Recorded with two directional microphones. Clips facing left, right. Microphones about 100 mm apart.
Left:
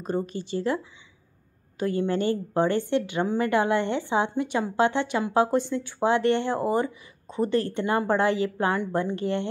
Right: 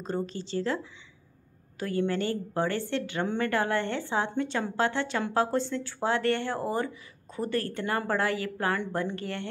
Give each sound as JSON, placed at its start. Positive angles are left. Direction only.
{"t": 0.0, "sound": "speech", "side_deg": 15}
{"t": 1.8, "sound": "a woman's voice", "side_deg": 20}